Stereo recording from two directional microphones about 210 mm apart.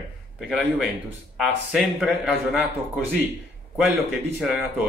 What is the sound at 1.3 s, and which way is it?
Speech, centre (ahead or behind).